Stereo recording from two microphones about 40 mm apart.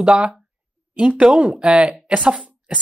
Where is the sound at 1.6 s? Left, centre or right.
Right.